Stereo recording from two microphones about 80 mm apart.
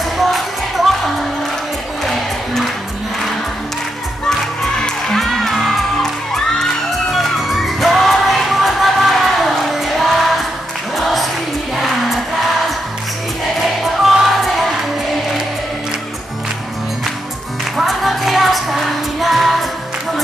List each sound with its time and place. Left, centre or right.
0.2 s music: centre
2.0 s music: centre
4.3 s music: centre
13.6 s music: centre
17.7 s music: centre